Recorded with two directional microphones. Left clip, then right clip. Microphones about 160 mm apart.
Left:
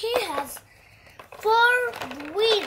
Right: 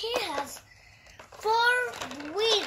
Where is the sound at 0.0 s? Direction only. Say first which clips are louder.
Left 5 dB; 15° left (ahead or behind).